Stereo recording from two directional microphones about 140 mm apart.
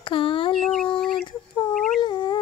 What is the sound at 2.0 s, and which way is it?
Dog, 35° left (ahead or behind).